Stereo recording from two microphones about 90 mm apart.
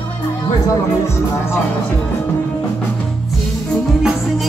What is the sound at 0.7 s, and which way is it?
Music, 30° left (ahead or behind).